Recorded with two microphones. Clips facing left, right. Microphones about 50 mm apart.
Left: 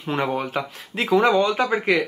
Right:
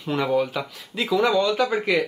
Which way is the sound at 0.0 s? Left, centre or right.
Left.